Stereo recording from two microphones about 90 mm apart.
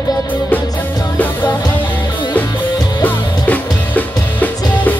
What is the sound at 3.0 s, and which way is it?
Music, 20° left (ahead or behind).